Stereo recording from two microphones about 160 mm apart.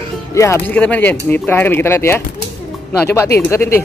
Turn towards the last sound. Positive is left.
turn(degrees=15)  # may be behind; listen again after turning